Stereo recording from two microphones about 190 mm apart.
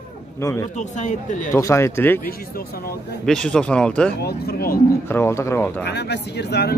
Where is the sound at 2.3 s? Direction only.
50° left (ahead or behind).